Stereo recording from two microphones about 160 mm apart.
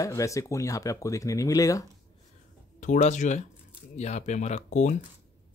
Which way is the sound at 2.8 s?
50° left (ahead or behind).